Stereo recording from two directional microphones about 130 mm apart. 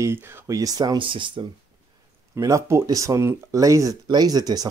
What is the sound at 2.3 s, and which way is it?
Speech, 25° right (ahead or behind).